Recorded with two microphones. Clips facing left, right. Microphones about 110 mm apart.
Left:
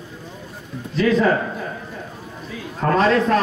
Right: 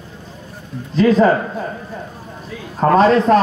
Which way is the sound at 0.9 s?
25° right (ahead or behind).